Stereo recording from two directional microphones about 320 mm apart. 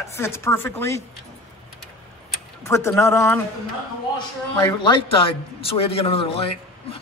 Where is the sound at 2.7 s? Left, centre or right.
Centre.